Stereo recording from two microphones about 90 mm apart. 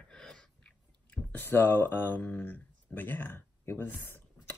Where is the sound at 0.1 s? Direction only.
10° left (ahead or behind).